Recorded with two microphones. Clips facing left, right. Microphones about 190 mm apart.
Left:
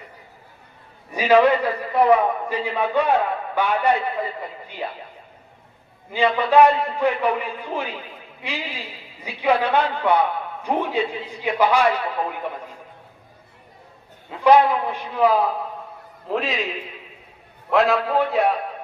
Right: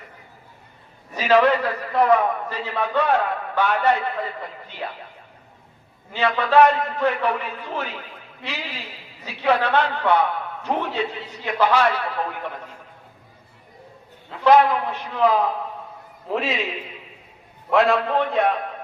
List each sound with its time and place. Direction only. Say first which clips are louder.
1.1 s a man's voice: left 2 dB; 10° left (ahead or behind)
6.1 s a man's voice: left 1 dB; 10° left (ahead or behind)
14.4 s a man's voice: left 1 dB; 15° left (ahead or behind)
16.3 s a man's voice: even; centre (ahead or behind)
17.6 s a man's voice: even; centre (ahead or behind)